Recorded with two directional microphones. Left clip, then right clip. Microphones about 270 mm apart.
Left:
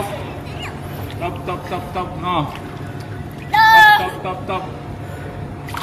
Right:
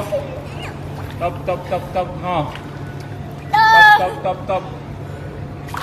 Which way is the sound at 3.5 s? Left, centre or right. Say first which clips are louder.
Even; centre.